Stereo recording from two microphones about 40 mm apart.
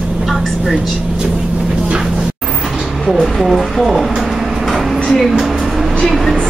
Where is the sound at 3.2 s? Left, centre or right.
Centre.